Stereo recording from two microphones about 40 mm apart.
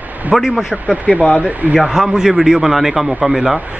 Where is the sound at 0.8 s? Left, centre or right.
Right.